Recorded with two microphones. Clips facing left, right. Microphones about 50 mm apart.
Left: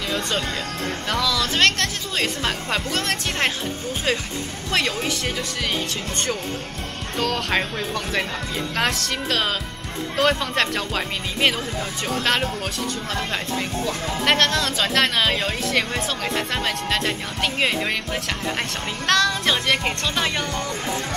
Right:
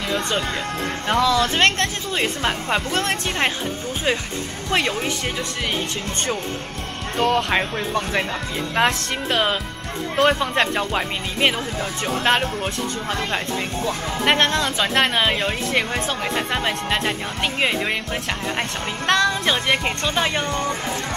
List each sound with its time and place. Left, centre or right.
1.2 s speech: right
4.6 s speech: centre
7.2 s speech: right
13.8 s speech: centre
19.1 s speech: centre